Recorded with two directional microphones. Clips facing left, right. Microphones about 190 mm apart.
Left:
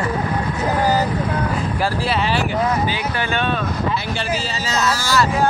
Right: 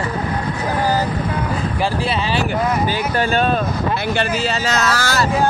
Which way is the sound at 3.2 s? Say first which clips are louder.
Right 6 dB; 40° right (ahead or behind).